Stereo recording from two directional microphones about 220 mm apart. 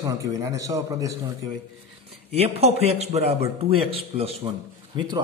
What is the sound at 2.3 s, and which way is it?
A man's voice, 25° right (ahead or behind).